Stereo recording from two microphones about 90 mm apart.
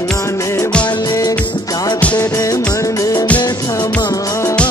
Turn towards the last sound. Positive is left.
turn(degrees=40)  # may be behind; listen again after turning